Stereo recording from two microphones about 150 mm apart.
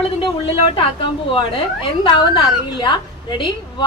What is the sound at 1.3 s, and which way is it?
A woman's voice, 35° left (ahead or behind).